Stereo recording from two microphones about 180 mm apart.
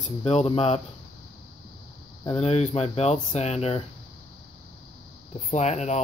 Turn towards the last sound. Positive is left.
turn(degrees=40)  # may be behind; listen again after turning